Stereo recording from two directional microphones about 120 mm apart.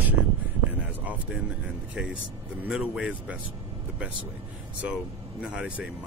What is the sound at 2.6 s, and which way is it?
Speech, 10° right (ahead or behind).